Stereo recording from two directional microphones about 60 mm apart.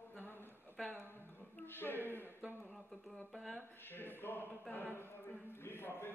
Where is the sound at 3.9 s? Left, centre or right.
Left.